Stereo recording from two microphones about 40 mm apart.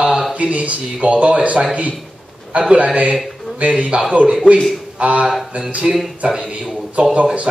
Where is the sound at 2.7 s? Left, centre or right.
Right.